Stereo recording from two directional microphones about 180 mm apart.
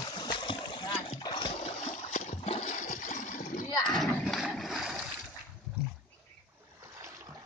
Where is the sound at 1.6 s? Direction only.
35° left (ahead or behind).